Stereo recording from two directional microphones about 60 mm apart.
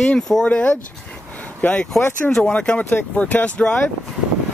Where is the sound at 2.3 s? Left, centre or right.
Centre.